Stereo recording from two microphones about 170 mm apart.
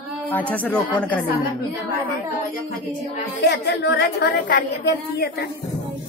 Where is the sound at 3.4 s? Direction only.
85° left.